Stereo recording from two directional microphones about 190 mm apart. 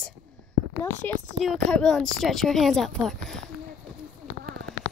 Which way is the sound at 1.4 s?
Centre (ahead or behind).